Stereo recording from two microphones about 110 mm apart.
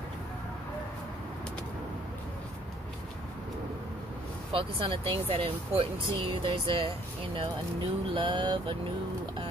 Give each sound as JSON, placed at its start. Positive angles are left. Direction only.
{"t": 4.5, "sound": "speech", "side_deg": -55}